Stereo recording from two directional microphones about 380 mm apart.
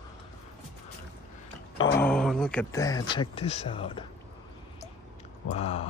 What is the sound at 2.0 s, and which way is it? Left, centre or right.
Speech, centre.